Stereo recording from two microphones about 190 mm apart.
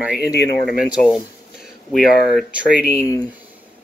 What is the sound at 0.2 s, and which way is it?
Speech, 60° left (ahead or behind).